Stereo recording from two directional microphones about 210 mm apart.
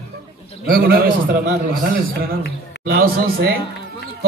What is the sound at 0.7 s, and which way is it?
Speech, 45° right (ahead or behind).